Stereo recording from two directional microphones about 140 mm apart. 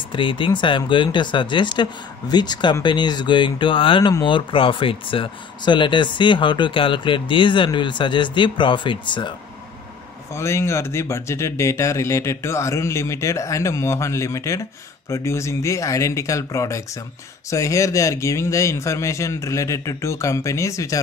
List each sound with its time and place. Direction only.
0.1 s speech: 35° left (ahead or behind)
10.3 s speech: 20° left (ahead or behind)